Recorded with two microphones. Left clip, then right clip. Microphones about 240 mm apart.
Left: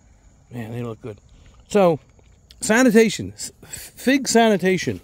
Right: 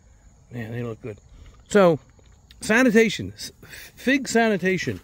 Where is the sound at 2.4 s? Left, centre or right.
Centre.